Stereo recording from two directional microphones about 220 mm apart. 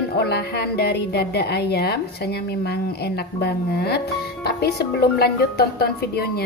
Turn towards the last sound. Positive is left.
turn(degrees=45)  # may be behind; listen again after turning